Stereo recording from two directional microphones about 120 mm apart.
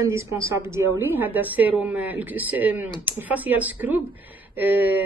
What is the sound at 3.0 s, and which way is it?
Speech, 15° right (ahead or behind).